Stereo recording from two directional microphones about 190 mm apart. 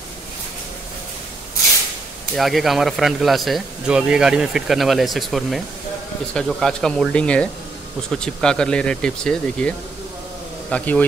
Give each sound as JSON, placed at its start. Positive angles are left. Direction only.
{"t": 2.3, "sound": "speech", "side_deg": 0}